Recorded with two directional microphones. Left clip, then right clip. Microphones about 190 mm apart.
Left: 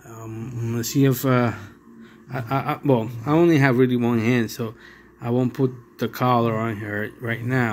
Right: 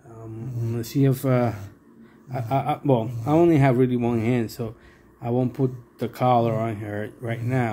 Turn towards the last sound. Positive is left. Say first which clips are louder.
# left 3 dB
turn(degrees=0)  # may be behind; listen again after turning